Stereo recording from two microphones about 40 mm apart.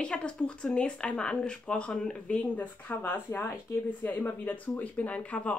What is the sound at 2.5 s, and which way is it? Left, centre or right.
Speech, left.